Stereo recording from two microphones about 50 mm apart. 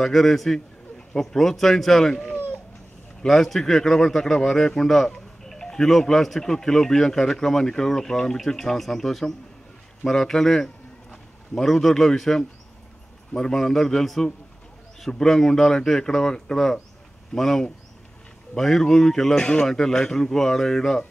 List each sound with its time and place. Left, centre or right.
0.0 s a man's voice: centre
2.3 s a sound: left
3.2 s a man's voice: centre